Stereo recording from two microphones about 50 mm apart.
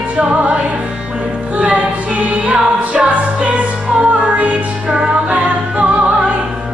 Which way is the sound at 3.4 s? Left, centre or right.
Right.